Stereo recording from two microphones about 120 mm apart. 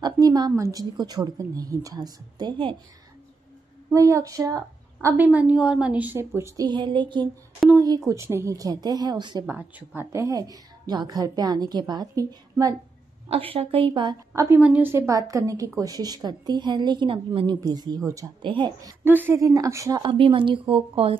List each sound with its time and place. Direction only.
0.0 s a woman's voice: 35° right (ahead or behind)
3.9 s a woman's voice: 25° right (ahead or behind)
5.1 s a woman's voice: 15° right (ahead or behind); by 7.2 s 40° right (ahead or behind)
7.7 s a woman's voice: 30° right (ahead or behind)
9.5 s a woman's voice: 15° right (ahead or behind); by 12.7 s 30° right (ahead or behind)
13.3 s speech: 55° right (ahead or behind)
14.3 s a woman's voice: 25° right (ahead or behind)
14.6 s a woman's voice: 15° right (ahead or behind); by 17.6 s 45° right (ahead or behind)
17.6 s a woman's voice: 35° right (ahead or behind)
18.4 s speech: 40° right (ahead or behind)
19.0 s a woman's voice: 15° right (ahead or behind)
20.0 s speech: 45° right (ahead or behind)